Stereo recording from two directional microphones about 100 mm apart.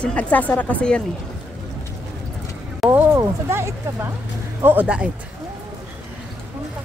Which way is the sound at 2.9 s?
30° right (ahead or behind).